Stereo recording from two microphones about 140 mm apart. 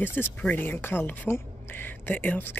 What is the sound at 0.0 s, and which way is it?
Speech, 15° left (ahead or behind).